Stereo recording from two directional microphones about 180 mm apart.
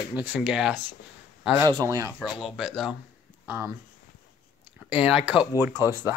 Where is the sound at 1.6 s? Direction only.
20° right (ahead or behind).